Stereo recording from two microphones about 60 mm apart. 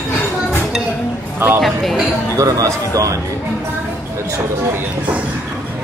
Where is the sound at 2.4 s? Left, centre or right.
Right.